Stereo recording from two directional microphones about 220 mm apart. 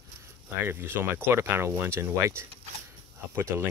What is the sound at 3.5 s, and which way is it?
Speech, 10° right (ahead or behind).